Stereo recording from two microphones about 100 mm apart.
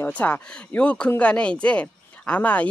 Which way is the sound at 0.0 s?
15° left (ahead or behind).